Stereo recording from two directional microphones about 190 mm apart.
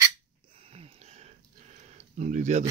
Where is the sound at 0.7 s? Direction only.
30° right (ahead or behind).